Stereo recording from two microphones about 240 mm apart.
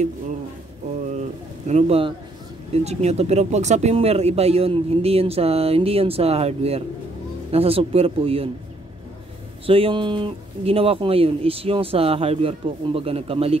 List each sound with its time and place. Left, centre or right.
1.7 s speech: right
9.7 s speech: right